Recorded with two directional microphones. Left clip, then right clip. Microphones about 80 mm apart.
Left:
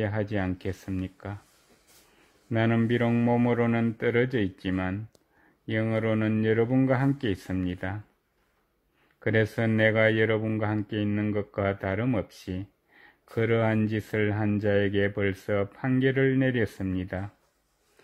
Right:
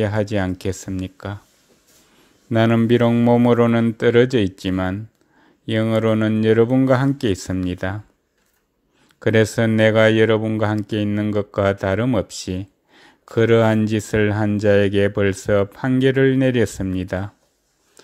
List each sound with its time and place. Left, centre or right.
0.0 s speech: right
2.5 s speech: right
9.2 s speech: right